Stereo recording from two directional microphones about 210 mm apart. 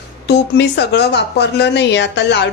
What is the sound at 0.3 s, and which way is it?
Speech, 50° left (ahead or behind).